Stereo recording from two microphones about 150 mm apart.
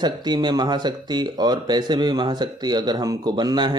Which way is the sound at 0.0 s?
30° right (ahead or behind).